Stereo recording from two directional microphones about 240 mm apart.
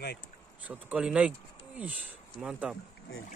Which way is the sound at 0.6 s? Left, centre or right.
Centre.